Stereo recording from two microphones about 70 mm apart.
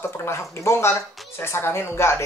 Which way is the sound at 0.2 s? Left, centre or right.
Left.